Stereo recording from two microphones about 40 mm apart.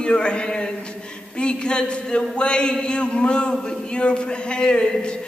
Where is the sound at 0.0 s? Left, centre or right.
Left.